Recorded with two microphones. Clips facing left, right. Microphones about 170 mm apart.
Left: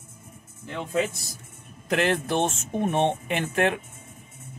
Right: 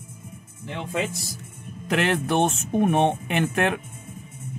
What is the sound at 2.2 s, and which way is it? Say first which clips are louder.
Speech: right 3 dB; 60° right (ahead or behind).